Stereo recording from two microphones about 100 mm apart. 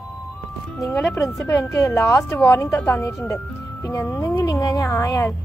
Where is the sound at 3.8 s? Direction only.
35° left (ahead or behind).